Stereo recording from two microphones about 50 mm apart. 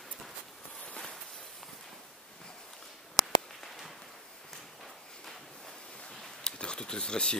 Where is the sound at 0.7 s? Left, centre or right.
Left.